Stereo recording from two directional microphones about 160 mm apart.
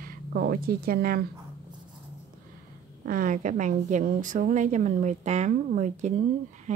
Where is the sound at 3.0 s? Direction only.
55° right (ahead or behind).